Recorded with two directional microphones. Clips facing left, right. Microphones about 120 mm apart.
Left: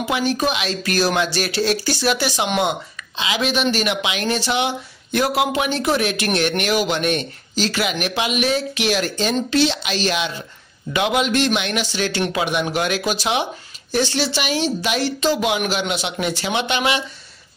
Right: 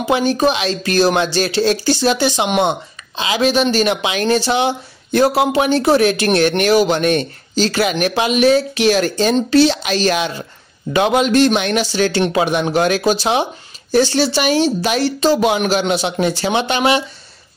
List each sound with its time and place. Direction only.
0.0 s speech: 30° right (ahead or behind)
3.2 s speech: 40° right (ahead or behind)